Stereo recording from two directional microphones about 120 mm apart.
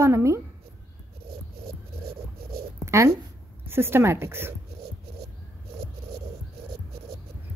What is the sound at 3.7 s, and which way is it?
Speech, 20° right (ahead or behind).